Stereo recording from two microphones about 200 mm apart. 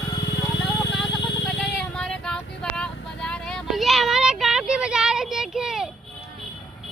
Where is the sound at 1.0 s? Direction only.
Centre (ahead or behind).